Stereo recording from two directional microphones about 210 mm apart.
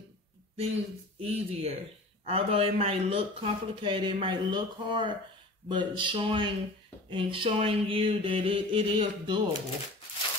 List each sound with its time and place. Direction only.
1.2 s speech: 30° right (ahead or behind)